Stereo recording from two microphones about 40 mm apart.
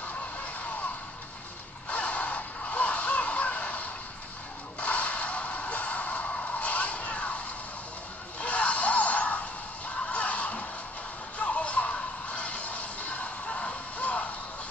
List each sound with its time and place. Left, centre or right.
1.9 s music: left